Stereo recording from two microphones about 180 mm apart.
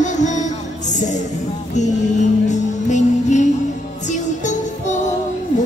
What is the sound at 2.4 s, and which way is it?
Music, 40° left (ahead or behind).